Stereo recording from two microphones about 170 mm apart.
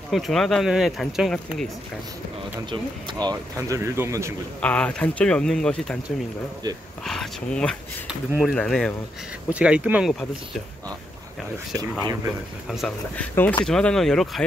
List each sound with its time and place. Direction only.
0.1 s speech: centre (ahead or behind)
2.7 s speech: 25° right (ahead or behind)
4.6 s speech: 10° left (ahead or behind)
7.1 s speech: 5° left (ahead or behind)
12.6 s speech: centre (ahead or behind)
13.3 s speech: 10° left (ahead or behind)